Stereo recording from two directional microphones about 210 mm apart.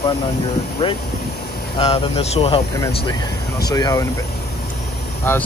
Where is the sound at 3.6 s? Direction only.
15° left (ahead or behind).